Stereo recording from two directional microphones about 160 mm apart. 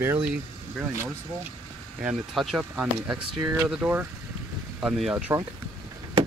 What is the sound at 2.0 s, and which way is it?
Speech, centre (ahead or behind).